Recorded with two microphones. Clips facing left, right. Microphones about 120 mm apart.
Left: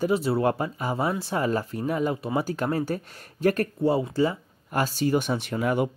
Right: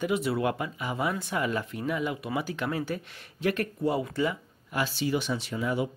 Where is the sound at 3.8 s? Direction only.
30° left (ahead or behind).